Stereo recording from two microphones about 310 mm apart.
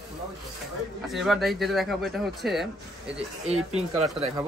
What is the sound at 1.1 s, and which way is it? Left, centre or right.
Speech, centre.